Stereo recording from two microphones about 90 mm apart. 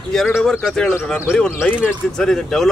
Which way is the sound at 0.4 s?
5° left (ahead or behind).